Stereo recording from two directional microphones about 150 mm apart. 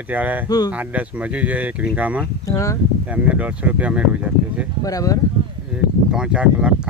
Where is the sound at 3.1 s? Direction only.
10° right (ahead or behind).